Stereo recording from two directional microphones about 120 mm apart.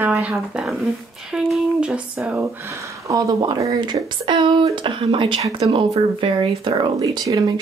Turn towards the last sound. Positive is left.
turn(degrees=-30)  # may be behind; listen again after turning